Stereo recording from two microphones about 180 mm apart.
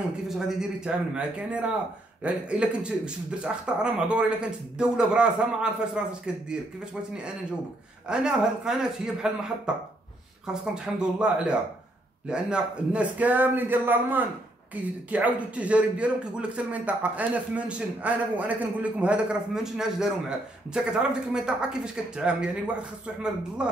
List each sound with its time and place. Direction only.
0.3 s speech: 5° right (ahead or behind)
8.1 s a man's voice: 5° right (ahead or behind)